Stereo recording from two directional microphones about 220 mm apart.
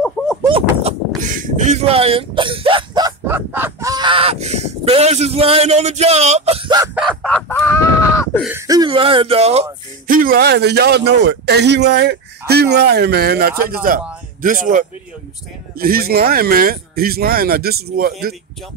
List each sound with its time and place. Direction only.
0.5 s speech: 25° right (ahead or behind)
7.0 s chicken: centre (ahead or behind)
8.4 s speech: 10° right (ahead or behind); by 18.3 s 45° right (ahead or behind)